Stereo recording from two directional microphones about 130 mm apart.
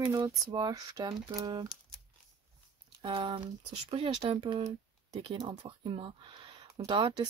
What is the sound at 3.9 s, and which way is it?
Speech, 45° right (ahead or behind).